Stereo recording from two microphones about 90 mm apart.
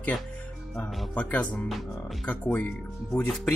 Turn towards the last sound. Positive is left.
turn(degrees=5)  # may be behind; listen again after turning